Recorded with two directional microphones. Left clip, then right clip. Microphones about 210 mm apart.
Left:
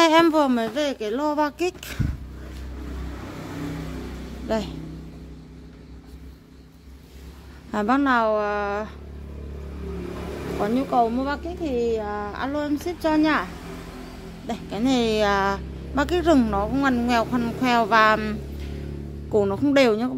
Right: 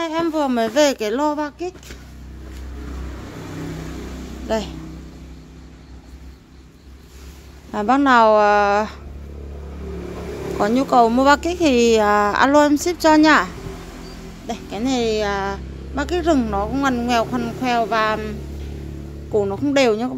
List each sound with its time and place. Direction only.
0.0 s a sound: 35° left (ahead or behind)
0.7 s a woman's voice: 25° right (ahead or behind)
1.6 s speech: 30° left (ahead or behind)
4.5 s a woman's voice: centre (ahead or behind)
7.7 s a woman's voice: 5° right (ahead or behind); by 8.9 s 20° right (ahead or behind)
10.6 s speech: 20° right (ahead or behind)
14.5 s a woman's voice: 5° left (ahead or behind)
19.3 s a woman's voice: 10° left (ahead or behind)